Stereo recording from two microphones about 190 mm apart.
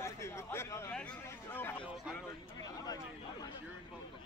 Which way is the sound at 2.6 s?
20° left (ahead or behind).